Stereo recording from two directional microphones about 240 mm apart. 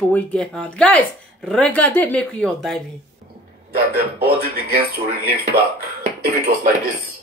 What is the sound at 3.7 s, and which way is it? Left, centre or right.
Speech, right.